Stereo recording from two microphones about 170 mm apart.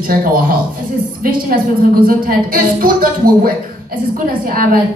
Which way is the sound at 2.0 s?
55° right (ahead or behind).